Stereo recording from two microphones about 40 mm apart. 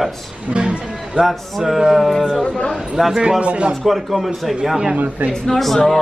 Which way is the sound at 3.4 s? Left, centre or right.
Right.